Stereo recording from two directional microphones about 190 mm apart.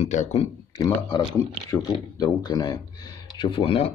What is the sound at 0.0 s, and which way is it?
Speech, 35° left (ahead or behind).